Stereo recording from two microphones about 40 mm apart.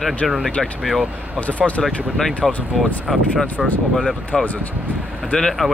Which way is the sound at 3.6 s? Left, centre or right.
Centre.